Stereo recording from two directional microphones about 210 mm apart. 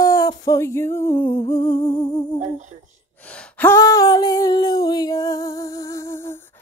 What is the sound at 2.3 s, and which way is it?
Female singing, 35° right (ahead or behind).